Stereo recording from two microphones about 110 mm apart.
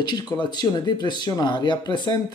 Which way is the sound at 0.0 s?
40° left (ahead or behind).